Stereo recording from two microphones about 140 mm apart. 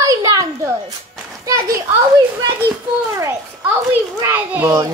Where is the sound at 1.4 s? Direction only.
25° right (ahead or behind).